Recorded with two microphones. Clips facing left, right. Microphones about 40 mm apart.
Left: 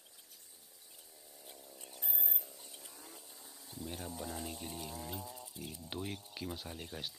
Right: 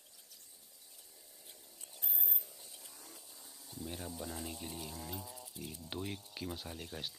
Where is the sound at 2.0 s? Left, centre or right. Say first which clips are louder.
Left 1 dB; centre.